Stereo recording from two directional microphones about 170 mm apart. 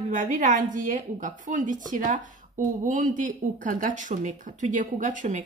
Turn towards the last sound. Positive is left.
turn(degrees=-50)  # may be behind; listen again after turning